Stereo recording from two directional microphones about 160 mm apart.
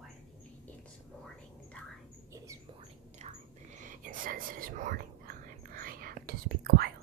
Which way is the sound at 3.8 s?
55° right (ahead or behind).